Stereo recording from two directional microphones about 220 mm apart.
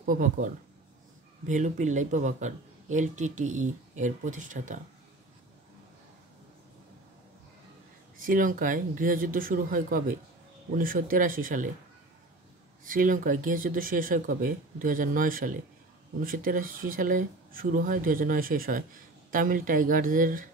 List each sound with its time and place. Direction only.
0.0 s speech: 35° right (ahead or behind)
1.5 s speech: 35° right (ahead or behind)
8.2 s speech: 40° right (ahead or behind)
12.8 s speech: 40° right (ahead or behind)